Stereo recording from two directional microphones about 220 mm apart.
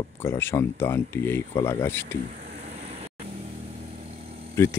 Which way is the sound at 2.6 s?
25° right (ahead or behind).